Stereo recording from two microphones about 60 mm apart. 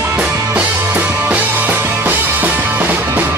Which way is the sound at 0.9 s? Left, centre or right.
Right.